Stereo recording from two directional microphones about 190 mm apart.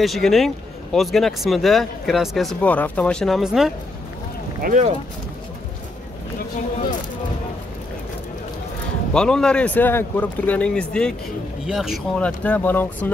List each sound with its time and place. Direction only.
0.0 s speech: centre (ahead or behind)
4.6 s speech: 50° right (ahead or behind)
9.1 s speech: 5° left (ahead or behind)